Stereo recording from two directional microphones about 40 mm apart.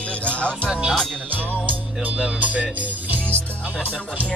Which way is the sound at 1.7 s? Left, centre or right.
Right.